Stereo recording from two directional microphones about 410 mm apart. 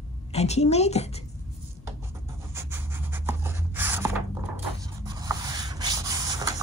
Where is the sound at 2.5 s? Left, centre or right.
Centre.